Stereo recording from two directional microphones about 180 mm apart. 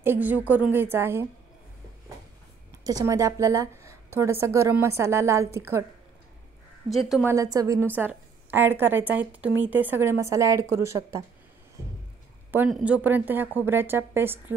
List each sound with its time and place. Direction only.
0.0 s a woman's voice: 10° right (ahead or behind)
2.8 s a woman's voice: 20° right (ahead or behind)
6.9 s a woman's voice: centre (ahead or behind)
7.2 s a woman's voice: 20° right (ahead or behind)
12.4 s a sound: 10° right (ahead or behind)
12.7 s a woman's voice: 5° right (ahead or behind)